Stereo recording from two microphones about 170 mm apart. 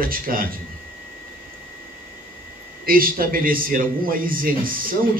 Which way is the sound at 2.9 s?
60° right (ahead or behind).